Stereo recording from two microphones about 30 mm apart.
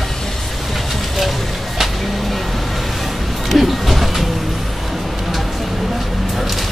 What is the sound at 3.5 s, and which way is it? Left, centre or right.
Vehicle, centre.